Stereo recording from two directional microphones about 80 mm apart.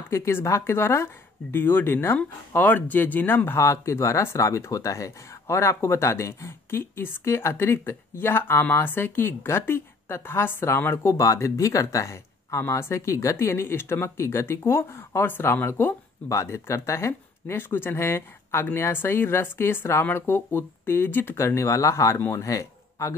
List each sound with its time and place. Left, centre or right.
0.1 s speech: left
16.3 s speech: left